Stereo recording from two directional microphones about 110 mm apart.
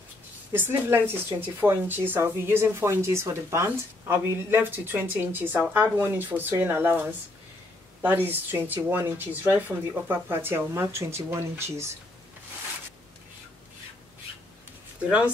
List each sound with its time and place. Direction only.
0.5 s a woman's voice: 20° right (ahead or behind)